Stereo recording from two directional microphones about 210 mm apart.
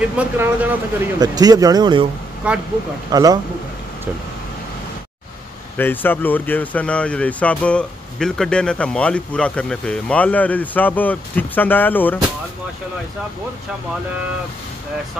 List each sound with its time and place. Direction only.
0.0 s speech: 5° right (ahead or behind)
1.2 s speech: 20° right (ahead or behind)
2.4 s speech: 5° right (ahead or behind)
3.1 s speech: 15° right (ahead or behind)
5.8 s speech: 10° left (ahead or behind)